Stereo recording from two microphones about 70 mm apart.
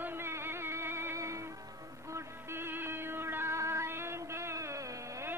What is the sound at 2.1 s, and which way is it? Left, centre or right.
Music, right.